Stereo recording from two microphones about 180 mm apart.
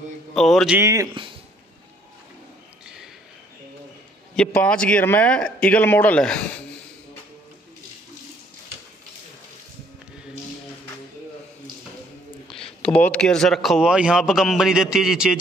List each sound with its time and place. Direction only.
0.3 s a man's voice: centre (ahead or behind)
0.7 s speech: 15° right (ahead or behind)
4.4 s a man's voice: 5° left (ahead or behind)
12.5 s a sound: centre (ahead or behind)
12.8 s a man's voice: 5° left (ahead or behind)